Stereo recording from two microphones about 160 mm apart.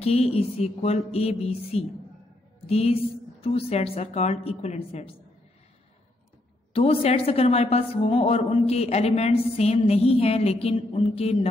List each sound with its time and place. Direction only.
0.0 s a woman's voice: 40° left (ahead or behind)
6.7 s a woman's voice: 40° left (ahead or behind)